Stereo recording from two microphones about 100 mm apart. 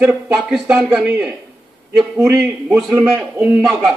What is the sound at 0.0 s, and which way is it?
Speech, 15° right (ahead or behind).